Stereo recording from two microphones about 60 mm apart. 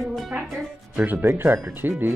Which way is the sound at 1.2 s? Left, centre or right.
Right.